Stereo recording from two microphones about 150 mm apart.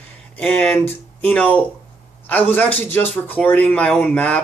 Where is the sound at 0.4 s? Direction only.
10° left (ahead or behind).